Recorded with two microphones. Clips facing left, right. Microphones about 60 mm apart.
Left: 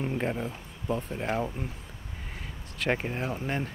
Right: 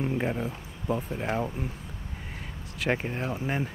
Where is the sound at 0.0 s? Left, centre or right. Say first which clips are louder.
Right 2 dB; centre.